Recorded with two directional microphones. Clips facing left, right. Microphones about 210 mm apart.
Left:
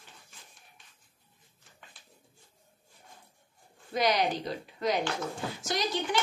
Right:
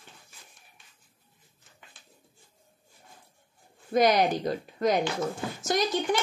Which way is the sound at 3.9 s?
50° right (ahead or behind).